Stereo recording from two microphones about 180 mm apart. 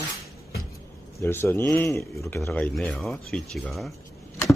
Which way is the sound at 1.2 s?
15° left (ahead or behind).